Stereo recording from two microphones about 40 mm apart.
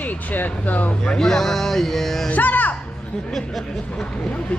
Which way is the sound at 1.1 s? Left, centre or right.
Centre.